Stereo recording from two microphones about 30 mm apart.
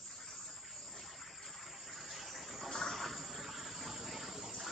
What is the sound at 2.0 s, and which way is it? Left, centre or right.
Water, centre.